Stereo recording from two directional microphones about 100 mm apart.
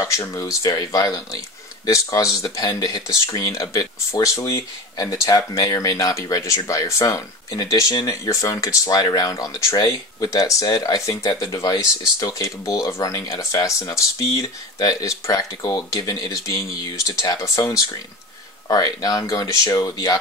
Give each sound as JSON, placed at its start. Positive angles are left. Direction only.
{"t": 0.0, "sound": "speech", "side_deg": 30}